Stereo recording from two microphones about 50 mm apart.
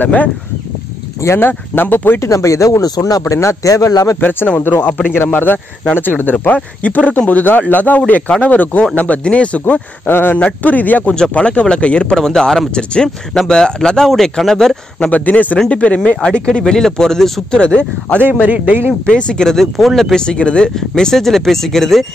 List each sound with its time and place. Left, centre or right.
0.0 s speech: left
1.2 s speech: left
1.5 s speech: left
2.1 s speech: left
4.2 s speech: left
10.0 s speech: left
10.3 s speech: left; by 14.8 s centre
15.0 s speech: left
18.4 s a man's voice: right
19.0 s speech: left
20.2 s speech: left